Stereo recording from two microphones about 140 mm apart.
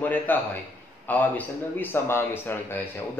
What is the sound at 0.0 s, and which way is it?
Speech, 10° left (ahead or behind).